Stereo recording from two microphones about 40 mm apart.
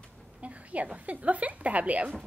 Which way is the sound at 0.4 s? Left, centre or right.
Right.